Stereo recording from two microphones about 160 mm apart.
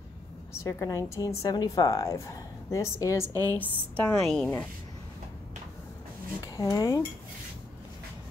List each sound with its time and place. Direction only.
0.7 s a woman's voice: 20° left (ahead or behind)
6.4 s a woman's voice: 20° left (ahead or behind)